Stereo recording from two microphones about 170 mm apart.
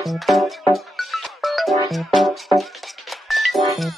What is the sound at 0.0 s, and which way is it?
Music, centre (ahead or behind).